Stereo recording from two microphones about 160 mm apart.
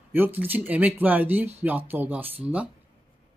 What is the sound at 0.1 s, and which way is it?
Speech, 10° right (ahead or behind).